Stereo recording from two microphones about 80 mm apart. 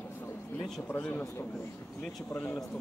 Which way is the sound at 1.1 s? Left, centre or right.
Left.